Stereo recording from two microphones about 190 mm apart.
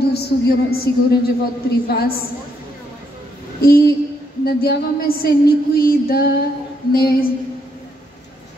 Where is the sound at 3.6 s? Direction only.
55° left (ahead or behind).